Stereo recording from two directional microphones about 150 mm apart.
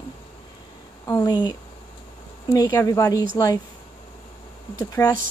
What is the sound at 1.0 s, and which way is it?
A woman's voice, 25° left (ahead or behind).